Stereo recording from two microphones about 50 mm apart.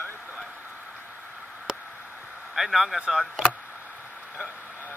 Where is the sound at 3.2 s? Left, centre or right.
Centre.